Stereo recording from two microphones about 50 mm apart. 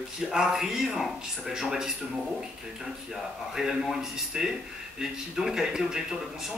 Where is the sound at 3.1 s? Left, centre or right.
Centre.